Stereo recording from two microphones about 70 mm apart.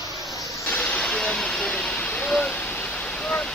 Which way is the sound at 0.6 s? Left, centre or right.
Left.